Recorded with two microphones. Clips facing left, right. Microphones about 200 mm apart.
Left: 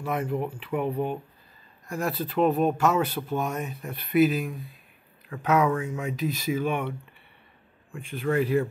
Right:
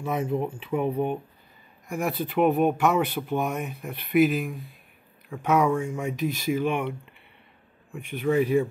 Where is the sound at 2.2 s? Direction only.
15° right (ahead or behind); by 5.9 s 5° left (ahead or behind).